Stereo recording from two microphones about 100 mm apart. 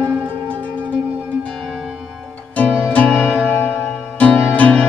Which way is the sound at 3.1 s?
10° right (ahead or behind).